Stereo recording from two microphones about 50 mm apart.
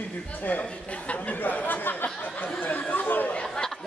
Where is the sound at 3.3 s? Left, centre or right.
Centre.